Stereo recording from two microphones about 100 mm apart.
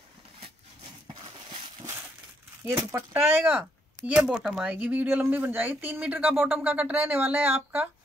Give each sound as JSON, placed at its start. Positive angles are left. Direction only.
{"t": 2.9, "sound": "speech", "side_deg": -20}